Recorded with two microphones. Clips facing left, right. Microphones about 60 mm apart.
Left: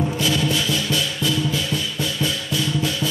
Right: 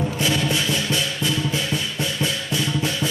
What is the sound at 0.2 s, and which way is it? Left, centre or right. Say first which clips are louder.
Music: right 1 dB; right.